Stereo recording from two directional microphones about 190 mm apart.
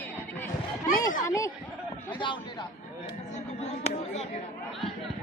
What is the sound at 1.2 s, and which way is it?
Speech, 15° left (ahead or behind).